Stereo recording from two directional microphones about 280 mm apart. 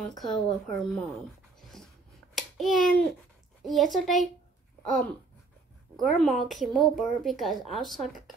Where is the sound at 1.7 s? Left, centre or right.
Centre.